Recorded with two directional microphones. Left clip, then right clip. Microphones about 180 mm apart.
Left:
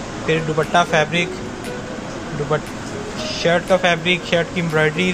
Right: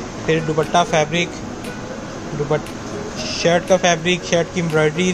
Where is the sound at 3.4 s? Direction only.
25° right (ahead or behind).